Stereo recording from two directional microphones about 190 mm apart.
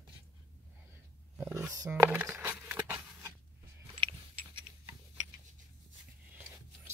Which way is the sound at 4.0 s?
30° right (ahead or behind).